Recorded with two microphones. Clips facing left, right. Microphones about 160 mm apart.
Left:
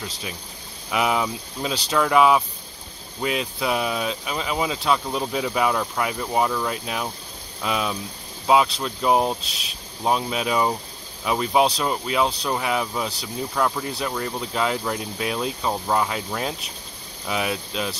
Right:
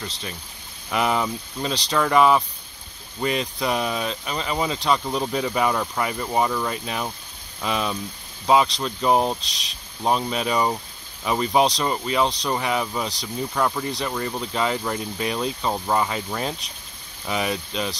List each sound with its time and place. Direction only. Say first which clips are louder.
0.0 s speech: even; 10° left (ahead or behind)